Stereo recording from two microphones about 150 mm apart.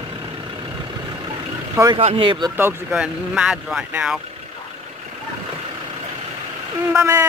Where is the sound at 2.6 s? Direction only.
15° right (ahead or behind).